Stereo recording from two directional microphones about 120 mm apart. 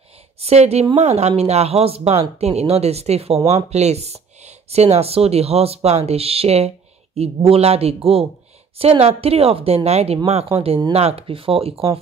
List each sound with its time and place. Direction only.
0.4 s speech: 60° right (ahead or behind)